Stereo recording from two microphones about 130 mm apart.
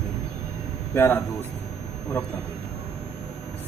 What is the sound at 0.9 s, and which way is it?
Speech, 15° left (ahead or behind).